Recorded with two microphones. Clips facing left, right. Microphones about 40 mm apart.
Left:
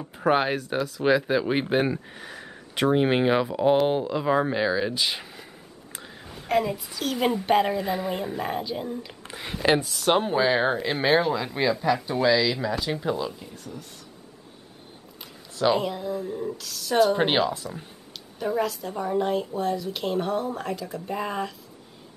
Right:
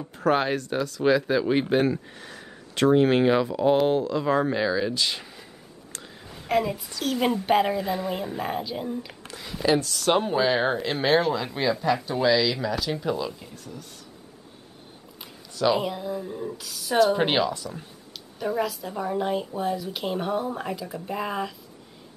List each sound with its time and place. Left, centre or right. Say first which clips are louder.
0.0 s speech: left 1 dB; centre
5.9 s a sound: left 2 dB; centre
7.4 s speech: even; centre
9.3 s a sound: left 1 dB; left
9.8 s speech: even; centre
15.5 s speech: even; centre
15.8 s speech: left 1 dB; centre